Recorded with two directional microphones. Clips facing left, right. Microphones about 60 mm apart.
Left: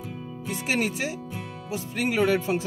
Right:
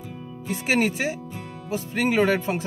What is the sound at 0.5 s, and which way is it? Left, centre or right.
Speech, right.